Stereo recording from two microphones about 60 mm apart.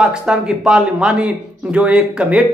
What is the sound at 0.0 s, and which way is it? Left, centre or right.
A man's voice, centre.